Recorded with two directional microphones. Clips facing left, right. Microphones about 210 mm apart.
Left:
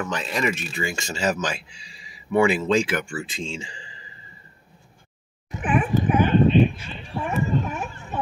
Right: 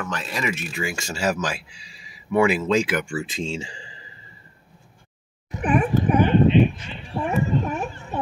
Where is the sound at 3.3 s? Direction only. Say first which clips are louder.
Right 4 dB; 40° right (ahead or behind).